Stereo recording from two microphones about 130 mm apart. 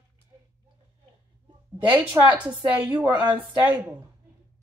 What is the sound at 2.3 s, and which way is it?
A woman's voice, 10° right (ahead or behind).